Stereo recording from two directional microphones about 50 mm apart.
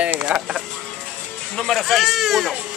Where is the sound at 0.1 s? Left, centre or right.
Right.